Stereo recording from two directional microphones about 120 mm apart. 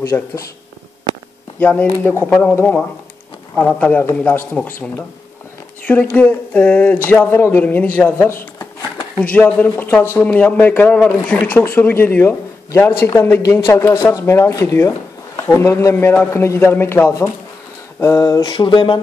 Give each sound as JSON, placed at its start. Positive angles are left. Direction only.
{"t": 0.1, "sound": "speech", "side_deg": 15}
{"t": 1.6, "sound": "a man's voice", "side_deg": 15}
{"t": 9.2, "sound": "a man's voice", "side_deg": 10}
{"t": 18.0, "sound": "a sound", "side_deg": 30}